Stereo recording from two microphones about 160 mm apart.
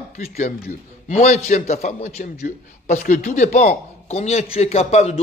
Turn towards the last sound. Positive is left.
turn(degrees=40)  # may be behind; listen again after turning